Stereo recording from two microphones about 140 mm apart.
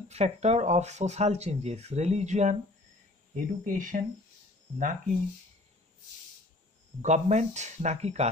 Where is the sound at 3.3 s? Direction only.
70° right (ahead or behind).